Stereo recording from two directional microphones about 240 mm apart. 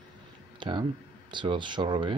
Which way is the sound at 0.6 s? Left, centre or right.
Centre.